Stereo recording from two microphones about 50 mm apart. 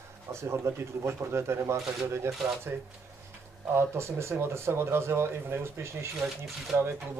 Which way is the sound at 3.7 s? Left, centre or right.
Right.